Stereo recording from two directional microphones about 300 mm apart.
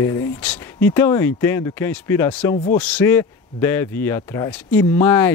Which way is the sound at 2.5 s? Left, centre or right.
Left.